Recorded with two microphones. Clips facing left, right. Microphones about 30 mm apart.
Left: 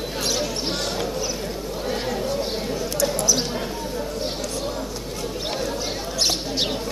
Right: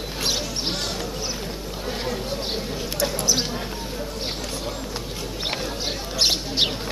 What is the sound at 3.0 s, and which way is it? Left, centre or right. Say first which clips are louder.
Basketball bounce: left 1 dB; centre.